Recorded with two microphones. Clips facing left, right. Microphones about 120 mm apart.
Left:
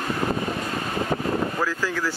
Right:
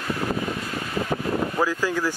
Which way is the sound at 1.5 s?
15° right (ahead or behind).